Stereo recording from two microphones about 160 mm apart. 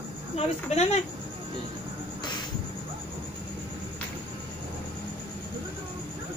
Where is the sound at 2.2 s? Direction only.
30° left (ahead or behind).